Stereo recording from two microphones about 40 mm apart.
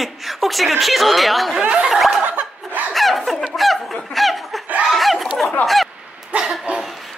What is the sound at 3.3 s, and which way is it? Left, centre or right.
Fowl, centre.